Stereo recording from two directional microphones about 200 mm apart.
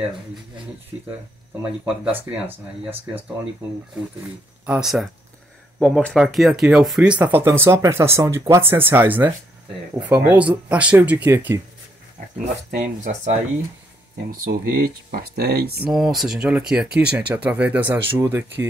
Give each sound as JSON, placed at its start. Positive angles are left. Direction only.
{"t": 2.1, "sound": "speech", "side_deg": -10}
{"t": 4.6, "sound": "speech", "side_deg": -5}
{"t": 12.7, "sound": "speech", "side_deg": -40}
{"t": 14.4, "sound": "speech", "side_deg": -45}
{"t": 15.8, "sound": "speech", "side_deg": 0}